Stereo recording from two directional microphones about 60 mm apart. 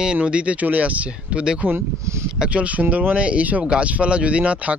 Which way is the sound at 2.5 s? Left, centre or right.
Right.